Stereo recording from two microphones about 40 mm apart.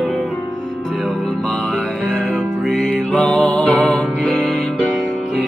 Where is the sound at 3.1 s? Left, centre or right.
Left.